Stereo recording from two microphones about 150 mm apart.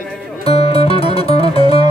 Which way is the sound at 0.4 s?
40° left (ahead or behind).